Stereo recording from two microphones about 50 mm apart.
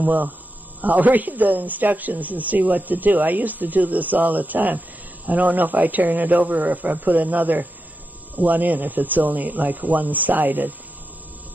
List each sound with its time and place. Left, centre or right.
0.0 s a man's voice: right